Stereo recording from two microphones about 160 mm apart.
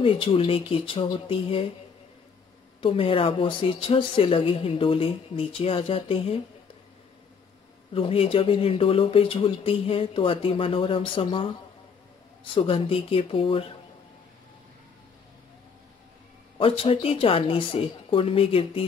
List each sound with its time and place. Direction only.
0.0 s a woman's voice: 35° left (ahead or behind)
2.8 s a woman's voice: 35° left (ahead or behind)
7.9 s a woman's voice: 35° left (ahead or behind)
12.5 s a woman's voice: 35° left (ahead or behind)
16.5 s a woman's voice: 35° left (ahead or behind)